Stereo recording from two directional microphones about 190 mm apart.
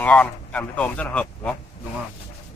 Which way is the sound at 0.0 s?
5° left (ahead or behind).